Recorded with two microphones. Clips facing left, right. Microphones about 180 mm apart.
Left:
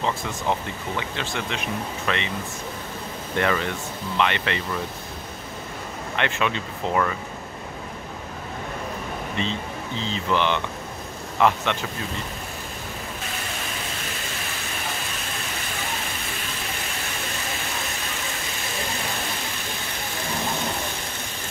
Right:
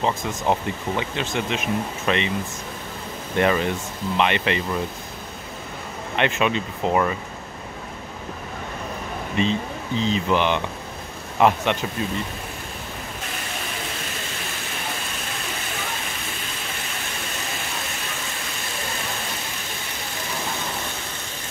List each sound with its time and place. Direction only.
0.0 s speech: 20° right (ahead or behind)
3.3 s speech: 20° right (ahead or behind)
6.1 s speech: 20° right (ahead or behind)
9.4 s speech: 15° right (ahead or behind)